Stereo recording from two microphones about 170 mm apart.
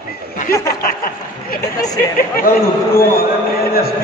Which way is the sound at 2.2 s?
60° left (ahead or behind).